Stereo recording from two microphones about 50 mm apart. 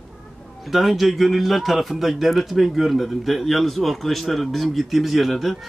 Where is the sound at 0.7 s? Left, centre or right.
Centre.